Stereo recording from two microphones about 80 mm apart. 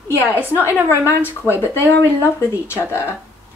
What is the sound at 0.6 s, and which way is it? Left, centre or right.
A woman's voice, left.